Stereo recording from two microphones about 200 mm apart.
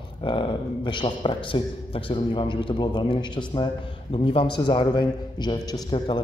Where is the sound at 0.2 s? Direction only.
25° left (ahead or behind).